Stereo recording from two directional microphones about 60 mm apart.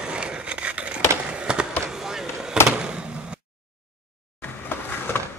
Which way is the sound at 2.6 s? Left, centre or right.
Centre.